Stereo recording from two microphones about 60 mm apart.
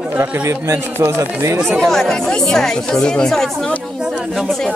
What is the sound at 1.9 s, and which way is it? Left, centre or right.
Speech, centre.